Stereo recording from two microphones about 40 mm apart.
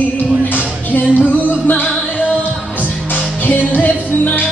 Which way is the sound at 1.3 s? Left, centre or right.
Left.